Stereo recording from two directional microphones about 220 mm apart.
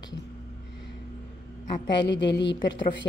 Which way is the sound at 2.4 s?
55° left (ahead or behind).